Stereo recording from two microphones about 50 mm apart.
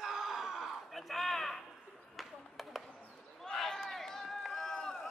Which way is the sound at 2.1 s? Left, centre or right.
Centre.